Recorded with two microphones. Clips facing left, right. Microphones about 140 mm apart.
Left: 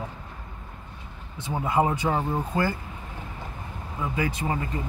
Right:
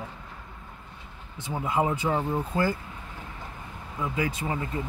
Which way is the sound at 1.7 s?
35° left (ahead or behind).